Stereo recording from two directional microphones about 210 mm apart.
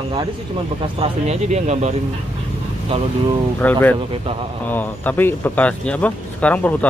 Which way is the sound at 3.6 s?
10° left (ahead or behind).